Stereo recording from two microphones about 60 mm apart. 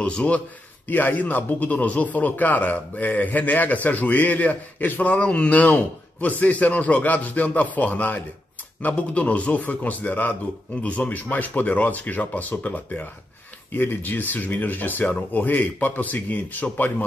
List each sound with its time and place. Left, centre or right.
0.0 s speech: left
13.7 s speech: left